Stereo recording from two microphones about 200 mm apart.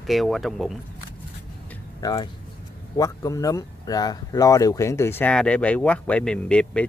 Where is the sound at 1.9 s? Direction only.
20° left (ahead or behind).